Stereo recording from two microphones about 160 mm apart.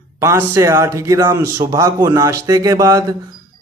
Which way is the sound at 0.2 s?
20° right (ahead or behind).